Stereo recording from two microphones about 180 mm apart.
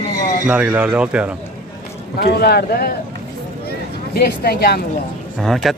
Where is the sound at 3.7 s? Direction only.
60° left (ahead or behind).